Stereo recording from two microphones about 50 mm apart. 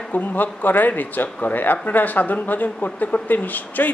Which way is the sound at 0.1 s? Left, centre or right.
Left.